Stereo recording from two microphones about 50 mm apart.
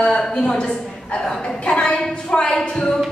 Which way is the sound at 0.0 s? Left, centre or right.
Centre.